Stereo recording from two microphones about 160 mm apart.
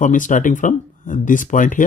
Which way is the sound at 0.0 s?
55° left (ahead or behind).